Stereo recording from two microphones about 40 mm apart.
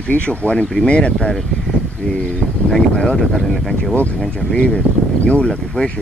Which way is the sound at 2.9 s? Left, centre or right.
Left.